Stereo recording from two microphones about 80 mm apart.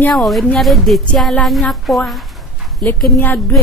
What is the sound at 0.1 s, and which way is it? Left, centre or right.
A woman's voice, centre.